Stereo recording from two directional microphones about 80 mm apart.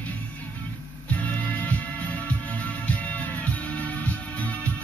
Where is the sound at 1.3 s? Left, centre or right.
Centre.